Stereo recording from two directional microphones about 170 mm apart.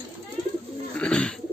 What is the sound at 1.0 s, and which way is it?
Bird, 5° left (ahead or behind).